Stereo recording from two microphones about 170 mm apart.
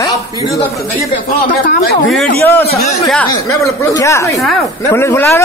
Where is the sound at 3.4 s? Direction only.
20° left (ahead or behind).